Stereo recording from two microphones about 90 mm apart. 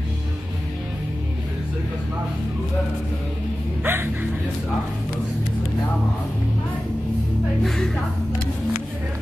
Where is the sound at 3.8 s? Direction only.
25° right (ahead or behind).